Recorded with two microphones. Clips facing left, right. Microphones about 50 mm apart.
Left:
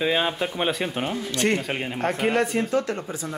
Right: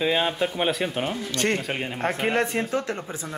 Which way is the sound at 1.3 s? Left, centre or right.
Left.